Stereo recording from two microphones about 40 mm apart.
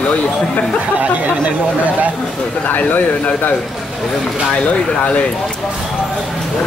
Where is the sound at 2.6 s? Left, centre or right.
Left.